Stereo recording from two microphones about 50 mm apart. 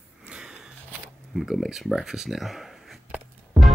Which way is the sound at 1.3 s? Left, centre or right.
Centre.